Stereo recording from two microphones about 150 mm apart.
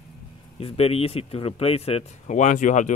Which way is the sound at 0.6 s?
40° left (ahead or behind).